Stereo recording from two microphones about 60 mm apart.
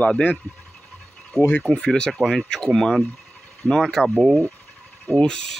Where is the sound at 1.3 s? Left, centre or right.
Left.